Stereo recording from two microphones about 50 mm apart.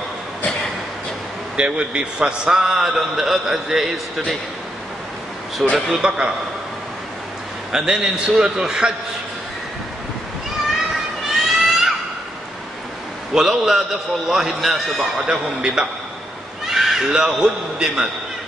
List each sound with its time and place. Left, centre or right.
1.6 s a man's voice: right; by 3.9 s centre
5.6 s speech: centre
6.0 s a man's voice: right
7.7 s a man's voice: centre
11.2 s a sound: centre
13.3 s a man's voice: centre
16.6 s crow: centre
17.1 s a man's voice: centre